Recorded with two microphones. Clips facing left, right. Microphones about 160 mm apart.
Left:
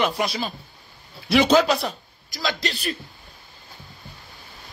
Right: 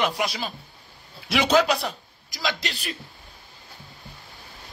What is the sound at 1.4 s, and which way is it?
Speech, 10° right (ahead or behind).